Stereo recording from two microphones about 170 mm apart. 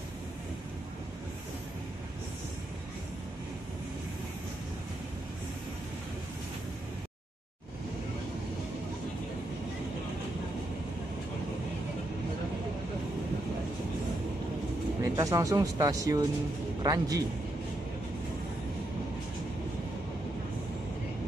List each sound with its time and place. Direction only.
15.0 s speech: 20° right (ahead or behind)